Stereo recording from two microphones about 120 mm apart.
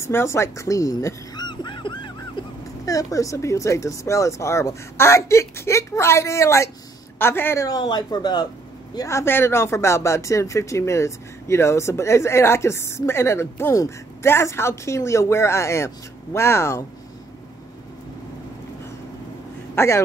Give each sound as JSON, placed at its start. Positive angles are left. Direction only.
{"t": 0.0, "sound": "a sound", "side_deg": 20}
{"t": 2.8, "sound": "speech", "side_deg": 30}
{"t": 7.6, "sound": "speech", "side_deg": 35}
{"t": 8.9, "sound": "speech", "side_deg": 25}
{"t": 19.7, "sound": "speech", "side_deg": 20}